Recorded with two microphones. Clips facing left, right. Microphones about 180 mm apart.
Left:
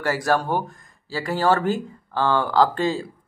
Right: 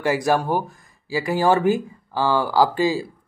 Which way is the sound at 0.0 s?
15° right (ahead or behind).